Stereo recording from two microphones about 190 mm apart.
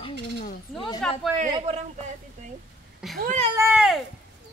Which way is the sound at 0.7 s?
25° left (ahead or behind).